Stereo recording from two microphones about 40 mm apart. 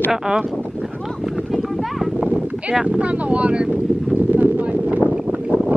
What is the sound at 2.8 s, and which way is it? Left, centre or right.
Speech, right.